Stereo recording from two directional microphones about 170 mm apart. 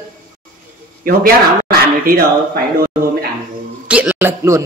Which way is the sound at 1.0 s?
60° right (ahead or behind).